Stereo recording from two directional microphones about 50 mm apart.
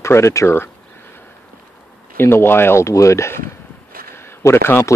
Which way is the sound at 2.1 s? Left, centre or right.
Left.